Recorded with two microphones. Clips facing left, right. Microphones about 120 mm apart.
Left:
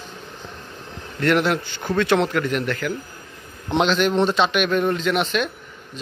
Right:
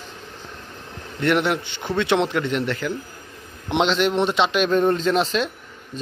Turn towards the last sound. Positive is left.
turn(degrees=-30)  # may be behind; listen again after turning